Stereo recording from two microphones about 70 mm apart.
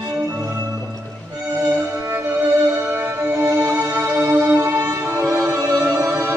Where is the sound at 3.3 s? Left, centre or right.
Right.